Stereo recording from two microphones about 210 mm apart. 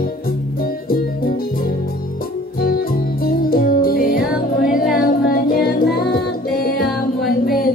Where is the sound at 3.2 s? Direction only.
45° left (ahead or behind).